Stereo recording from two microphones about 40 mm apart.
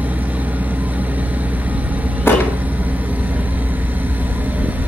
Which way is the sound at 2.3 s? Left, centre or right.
Left.